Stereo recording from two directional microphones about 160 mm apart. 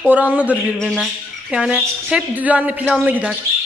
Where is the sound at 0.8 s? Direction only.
5° left (ahead or behind).